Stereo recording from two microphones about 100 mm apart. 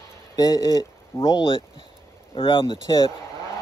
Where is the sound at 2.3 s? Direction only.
60° left (ahead or behind).